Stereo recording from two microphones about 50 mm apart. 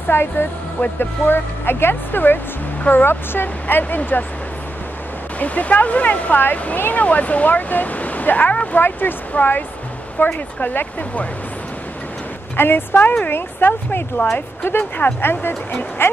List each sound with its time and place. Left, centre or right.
0.1 s speech: left
0.7 s speech: left
1.2 s speech: left
5.4 s speech: left
12.5 s speech: left
15.2 s speech: left